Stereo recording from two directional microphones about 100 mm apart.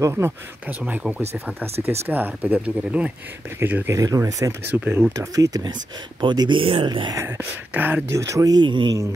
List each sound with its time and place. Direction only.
0.0 s speech: 25° right (ahead or behind)
3.9 s speech: 35° right (ahead or behind)
4.7 s speech: 20° right (ahead or behind); by 6.6 s 50° right (ahead or behind)
6.6 s speech: 70° right (ahead or behind)
6.9 s speech: 45° right (ahead or behind)
7.2 s speech: 20° right (ahead or behind)
8.1 s speech: 30° right (ahead or behind)
8.6 s a man's voice: 55° right (ahead or behind)